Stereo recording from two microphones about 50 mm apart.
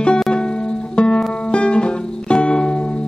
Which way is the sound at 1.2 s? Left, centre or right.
Centre.